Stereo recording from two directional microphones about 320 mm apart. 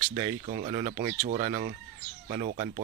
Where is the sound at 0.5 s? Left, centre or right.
Right.